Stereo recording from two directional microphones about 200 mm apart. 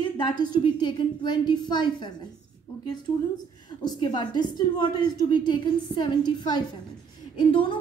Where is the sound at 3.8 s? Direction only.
20° left (ahead or behind).